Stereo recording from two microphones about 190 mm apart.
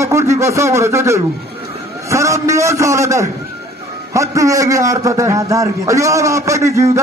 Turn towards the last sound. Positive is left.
turn(degrees=-15)  # may be behind; listen again after turning